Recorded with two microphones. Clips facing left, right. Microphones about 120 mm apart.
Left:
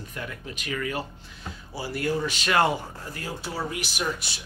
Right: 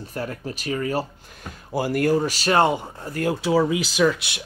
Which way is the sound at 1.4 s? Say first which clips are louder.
Right 9 dB; 50° right (ahead or behind).